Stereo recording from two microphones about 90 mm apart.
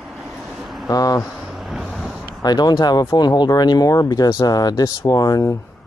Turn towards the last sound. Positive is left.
turn(degrees=45)  # may be behind; listen again after turning